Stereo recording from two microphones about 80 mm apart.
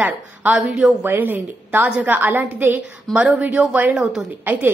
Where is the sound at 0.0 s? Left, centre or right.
Centre.